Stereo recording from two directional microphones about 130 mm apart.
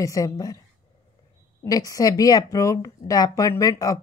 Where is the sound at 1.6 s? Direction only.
25° left (ahead or behind).